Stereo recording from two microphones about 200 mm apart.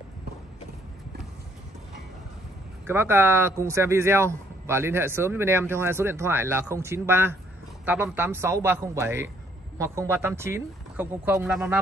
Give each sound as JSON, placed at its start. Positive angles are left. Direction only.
{"t": 2.9, "sound": "speech", "side_deg": -10}